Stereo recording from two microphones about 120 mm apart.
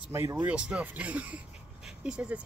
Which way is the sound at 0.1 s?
20° right (ahead or behind).